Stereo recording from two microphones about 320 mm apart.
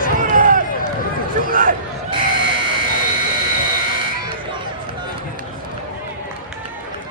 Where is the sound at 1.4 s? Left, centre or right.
Right.